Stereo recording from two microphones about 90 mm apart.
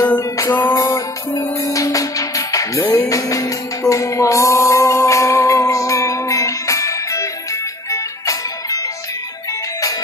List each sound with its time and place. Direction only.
0.0 s music: 25° left (ahead or behind)
0.7 s music: 40° left (ahead or behind)